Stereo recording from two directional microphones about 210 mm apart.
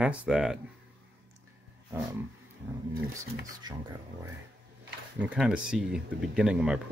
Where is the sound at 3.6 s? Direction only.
20° right (ahead or behind).